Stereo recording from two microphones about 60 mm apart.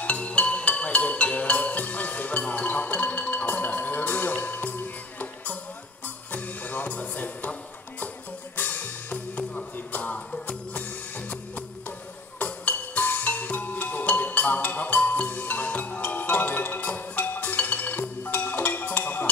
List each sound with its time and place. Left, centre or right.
0.0 s music: left
8.5 s music: left